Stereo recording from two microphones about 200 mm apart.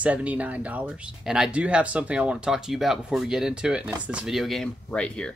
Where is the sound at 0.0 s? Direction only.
5° right (ahead or behind).